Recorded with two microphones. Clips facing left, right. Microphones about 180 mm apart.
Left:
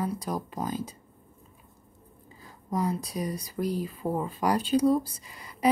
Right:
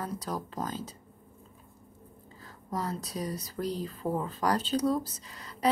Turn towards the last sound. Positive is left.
turn(degrees=10)  # may be behind; listen again after turning